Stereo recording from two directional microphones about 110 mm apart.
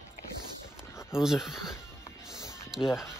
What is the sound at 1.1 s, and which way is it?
Speech, 5° right (ahead or behind).